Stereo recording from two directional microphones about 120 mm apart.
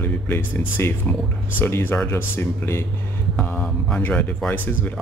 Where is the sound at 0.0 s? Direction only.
15° left (ahead or behind).